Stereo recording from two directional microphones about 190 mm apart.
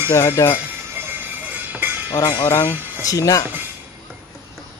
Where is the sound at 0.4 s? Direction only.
15° left (ahead or behind).